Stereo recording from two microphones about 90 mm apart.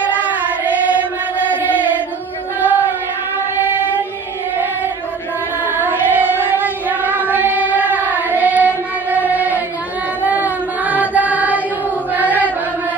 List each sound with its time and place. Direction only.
0.0 s choir: 15° right (ahead or behind)
2.6 s a sound: 20° right (ahead or behind)
5.7 s child singing: 20° right (ahead or behind)
12.1 s chant: 20° right (ahead or behind)